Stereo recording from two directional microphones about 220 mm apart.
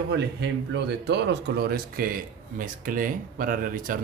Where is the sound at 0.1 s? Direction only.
50° right (ahead or behind).